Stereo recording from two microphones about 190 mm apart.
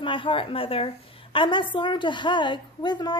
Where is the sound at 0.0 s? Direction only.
25° left (ahead or behind).